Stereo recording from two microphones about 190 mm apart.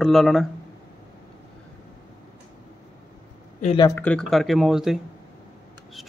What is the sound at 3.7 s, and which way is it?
Speech, 20° left (ahead or behind).